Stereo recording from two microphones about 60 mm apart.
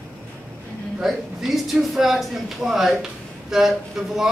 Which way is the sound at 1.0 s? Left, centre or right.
Centre.